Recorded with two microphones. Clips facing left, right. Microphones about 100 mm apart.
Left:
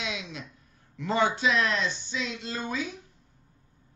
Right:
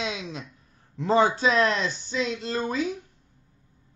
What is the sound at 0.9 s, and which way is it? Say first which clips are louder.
Speech: right 5 dB; 35° right (ahead or behind).